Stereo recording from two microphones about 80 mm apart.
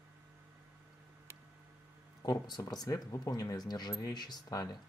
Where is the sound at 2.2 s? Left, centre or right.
Left.